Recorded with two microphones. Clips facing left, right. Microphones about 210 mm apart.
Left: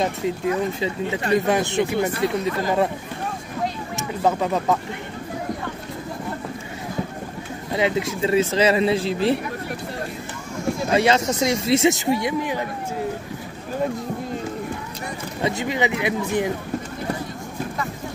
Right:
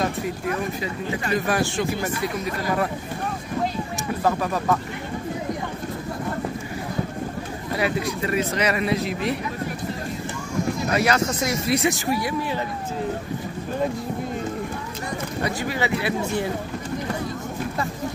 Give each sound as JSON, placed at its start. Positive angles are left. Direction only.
{"t": 0.0, "sound": "speech", "side_deg": 25}
{"t": 4.2, "sound": "speech", "side_deg": 20}
{"t": 7.7, "sound": "speech", "side_deg": 20}
{"t": 10.9, "sound": "speech", "side_deg": 25}
{"t": 15.4, "sound": "speech", "side_deg": 20}